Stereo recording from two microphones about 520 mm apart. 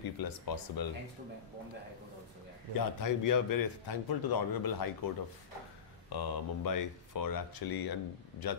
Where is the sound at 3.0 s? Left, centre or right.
Left.